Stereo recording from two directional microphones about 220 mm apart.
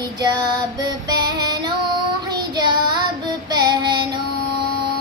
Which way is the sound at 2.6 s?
20° right (ahead or behind).